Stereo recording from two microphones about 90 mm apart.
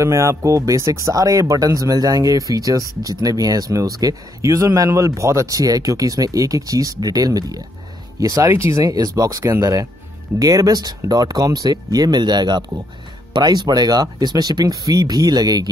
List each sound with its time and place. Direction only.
0.0 s speech: 35° right (ahead or behind)